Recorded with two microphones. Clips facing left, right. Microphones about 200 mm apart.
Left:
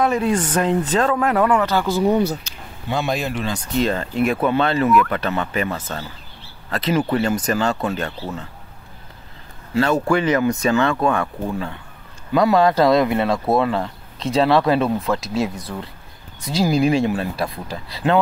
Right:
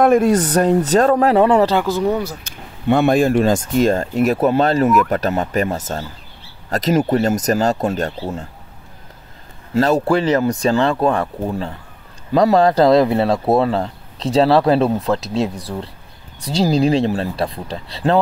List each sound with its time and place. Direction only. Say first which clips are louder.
0.0 s speech: right 6 dB; 50° right (ahead or behind); by 1.8 s 30° right (ahead or behind)
2.4 s speech: right 11 dB; 55° right (ahead or behind)
9.8 s speech: right 3 dB; 35° right (ahead or behind)